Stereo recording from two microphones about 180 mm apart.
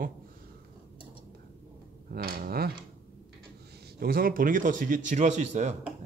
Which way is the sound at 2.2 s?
55° right (ahead or behind).